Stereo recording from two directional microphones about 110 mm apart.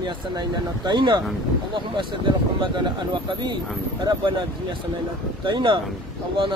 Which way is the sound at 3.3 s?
45° right (ahead or behind).